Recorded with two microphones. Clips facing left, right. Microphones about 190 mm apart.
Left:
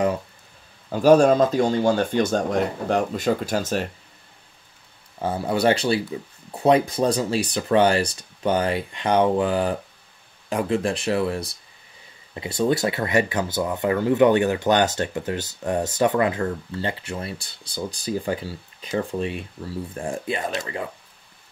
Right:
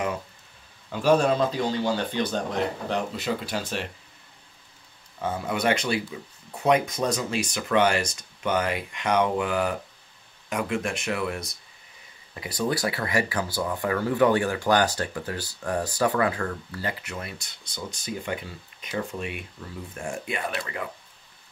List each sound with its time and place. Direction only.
0.8 s a man's voice: 40° left (ahead or behind)
5.2 s speech: 35° left (ahead or behind)